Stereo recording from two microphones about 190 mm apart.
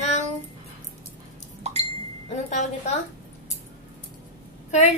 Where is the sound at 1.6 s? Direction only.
35° right (ahead or behind).